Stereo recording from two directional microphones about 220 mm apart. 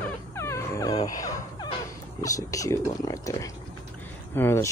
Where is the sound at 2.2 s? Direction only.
15° left (ahead or behind).